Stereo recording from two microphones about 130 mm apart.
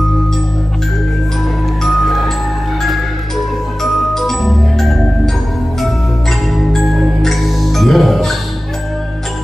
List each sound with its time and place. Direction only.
1.8 s music: centre (ahead or behind)
3.8 s music: centre (ahead or behind)
6.5 s music: centre (ahead or behind)